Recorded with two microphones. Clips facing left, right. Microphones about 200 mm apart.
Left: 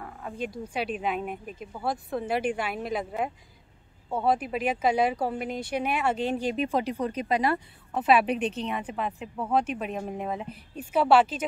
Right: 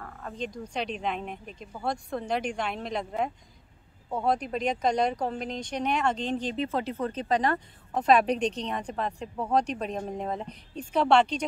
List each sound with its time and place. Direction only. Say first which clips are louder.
0.0 s speech: left 2 dB; 10° left (ahead or behind)